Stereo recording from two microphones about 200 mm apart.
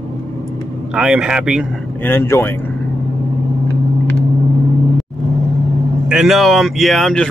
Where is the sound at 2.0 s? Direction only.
10° left (ahead or behind).